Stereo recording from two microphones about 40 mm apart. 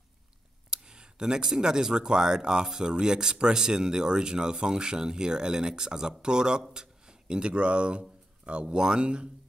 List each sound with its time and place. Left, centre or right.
0.7 s a man's voice: centre